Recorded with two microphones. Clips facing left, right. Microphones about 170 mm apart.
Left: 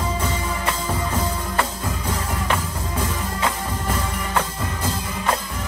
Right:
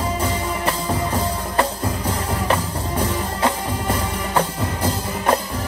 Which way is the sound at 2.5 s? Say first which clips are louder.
Right 4 dB; 30° right (ahead or behind).